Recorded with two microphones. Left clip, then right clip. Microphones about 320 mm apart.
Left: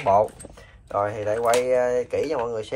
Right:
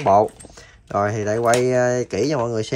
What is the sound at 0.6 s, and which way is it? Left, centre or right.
Speech, right.